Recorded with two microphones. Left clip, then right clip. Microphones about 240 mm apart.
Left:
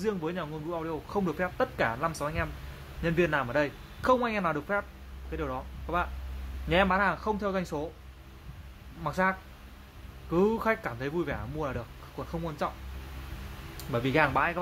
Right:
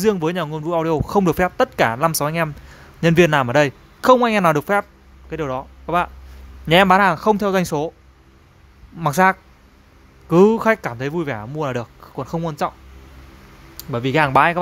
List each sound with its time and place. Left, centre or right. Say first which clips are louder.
0.0 s speech: right 13 dB; right
9.0 s speech: right 13 dB; right
13.7 s speech: right 8 dB; right